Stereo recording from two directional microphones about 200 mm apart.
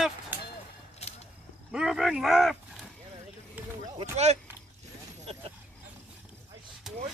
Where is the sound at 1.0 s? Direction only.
30° left (ahead or behind).